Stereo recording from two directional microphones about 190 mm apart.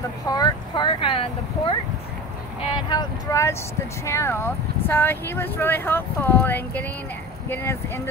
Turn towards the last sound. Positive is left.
turn(degrees=15)  # may be behind; listen again after turning